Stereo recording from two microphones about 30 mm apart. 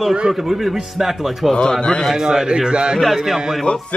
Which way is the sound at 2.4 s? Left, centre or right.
Right.